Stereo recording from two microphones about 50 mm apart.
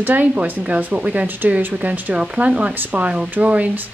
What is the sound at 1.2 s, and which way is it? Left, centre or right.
Speech, right.